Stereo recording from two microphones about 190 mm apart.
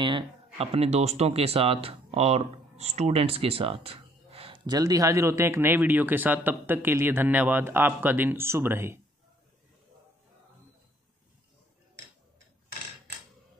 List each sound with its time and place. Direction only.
0.0 s speech: 30° right (ahead or behind); by 9.0 s 15° right (ahead or behind)